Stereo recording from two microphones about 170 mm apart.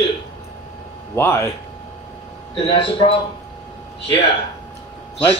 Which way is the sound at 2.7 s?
35° left (ahead or behind).